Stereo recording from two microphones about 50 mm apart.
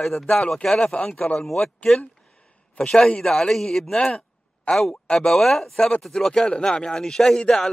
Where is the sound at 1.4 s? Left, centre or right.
Centre.